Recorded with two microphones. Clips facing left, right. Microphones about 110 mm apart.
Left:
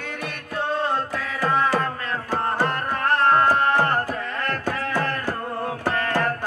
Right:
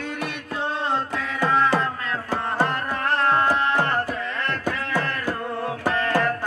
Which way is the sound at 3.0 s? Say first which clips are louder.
Left 3 dB; 45° left (ahead or behind).